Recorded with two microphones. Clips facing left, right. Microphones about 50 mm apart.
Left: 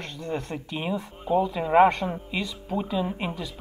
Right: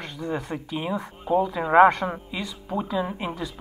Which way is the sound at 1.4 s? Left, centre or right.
Right.